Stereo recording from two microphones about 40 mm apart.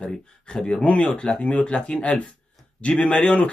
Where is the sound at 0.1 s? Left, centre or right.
Left.